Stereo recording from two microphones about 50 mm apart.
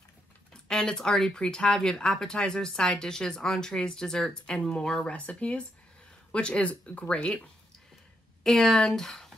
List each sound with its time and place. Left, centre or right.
0.5 s speech: centre
8.5 s speech: centre